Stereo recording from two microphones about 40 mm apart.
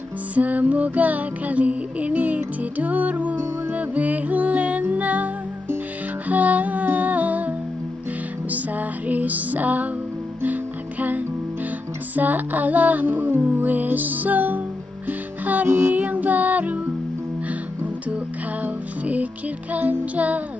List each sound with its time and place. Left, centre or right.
0.3 s music: right
18.6 s music: right